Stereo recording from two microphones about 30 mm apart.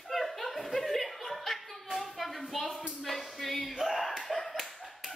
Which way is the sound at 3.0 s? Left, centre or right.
Centre.